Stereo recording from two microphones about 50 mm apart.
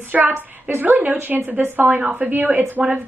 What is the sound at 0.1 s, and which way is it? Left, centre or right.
A woman's voice, right.